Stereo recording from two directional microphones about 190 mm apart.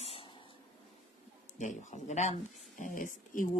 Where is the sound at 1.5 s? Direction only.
40° left (ahead or behind).